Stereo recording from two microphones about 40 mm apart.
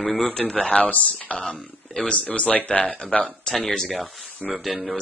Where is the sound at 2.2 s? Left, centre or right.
Left.